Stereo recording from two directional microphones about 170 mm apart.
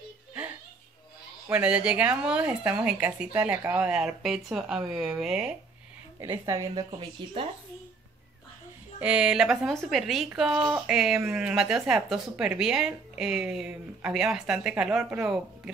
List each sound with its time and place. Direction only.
1.5 s speech: 5° right (ahead or behind)
6.1 s a woman's voice: 15° right (ahead or behind)
6.7 s speech: 30° right (ahead or behind)
9.0 s speech: 5° right (ahead or behind)